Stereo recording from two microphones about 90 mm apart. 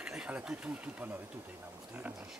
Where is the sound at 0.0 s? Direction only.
10° right (ahead or behind).